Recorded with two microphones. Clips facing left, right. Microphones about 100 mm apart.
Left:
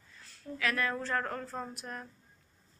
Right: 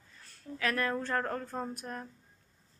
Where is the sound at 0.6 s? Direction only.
35° right (ahead or behind).